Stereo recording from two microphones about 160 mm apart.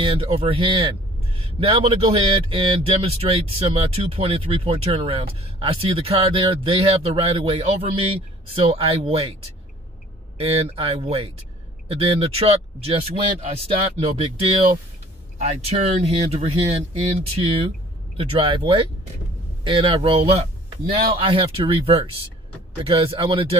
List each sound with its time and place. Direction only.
0.0 s a man's voice: 35° right (ahead or behind)
10.4 s a man's voice: 40° right (ahead or behind)
18.1 s a man's voice: 35° right (ahead or behind)